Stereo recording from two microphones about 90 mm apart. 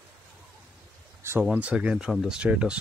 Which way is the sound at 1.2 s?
30° right (ahead or behind).